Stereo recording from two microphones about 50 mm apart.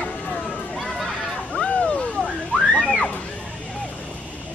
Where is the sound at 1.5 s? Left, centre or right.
Left.